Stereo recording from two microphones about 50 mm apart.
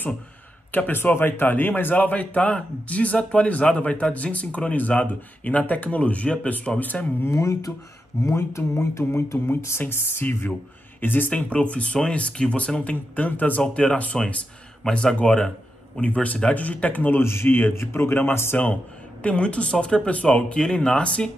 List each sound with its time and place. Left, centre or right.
0.7 s speech: left
1.1 s a man's voice: left
7.2 s speech: left
9.8 s speech: left
11.3 s a man's voice: left
13.6 s a man's voice: left
16.0 s a man's voice: left
17.2 s speech: left
17.7 s speech: left
19.2 s a man's voice: left